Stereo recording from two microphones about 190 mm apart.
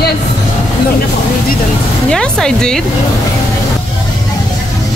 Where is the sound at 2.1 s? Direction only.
5° left (ahead or behind).